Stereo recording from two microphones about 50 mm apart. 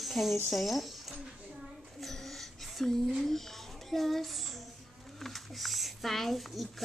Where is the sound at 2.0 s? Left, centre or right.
Centre.